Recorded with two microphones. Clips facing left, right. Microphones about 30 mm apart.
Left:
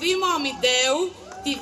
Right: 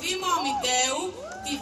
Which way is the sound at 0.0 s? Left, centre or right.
Left.